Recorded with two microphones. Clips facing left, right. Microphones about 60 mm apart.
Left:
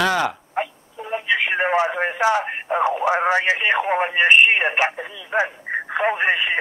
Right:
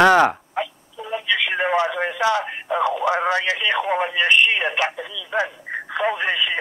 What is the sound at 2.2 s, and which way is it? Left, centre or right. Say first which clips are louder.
Speech: left 1 dB; left.